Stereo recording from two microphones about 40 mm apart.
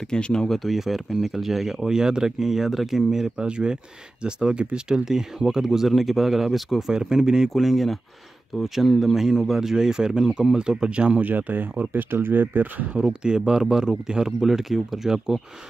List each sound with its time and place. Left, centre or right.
0.1 s speech: centre
0.7 s speech: centre
1.9 s speech: centre
3.1 s speech: centre
5.9 s speech: centre
7.5 s speech: centre; by 11.1 s right
11.1 s speech: right
13.0 s speech: centre